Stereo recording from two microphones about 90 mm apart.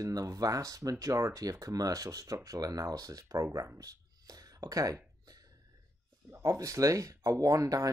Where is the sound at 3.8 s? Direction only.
45° right (ahead or behind).